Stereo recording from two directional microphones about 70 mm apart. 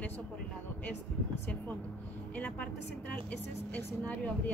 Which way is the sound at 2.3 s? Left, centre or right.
Left.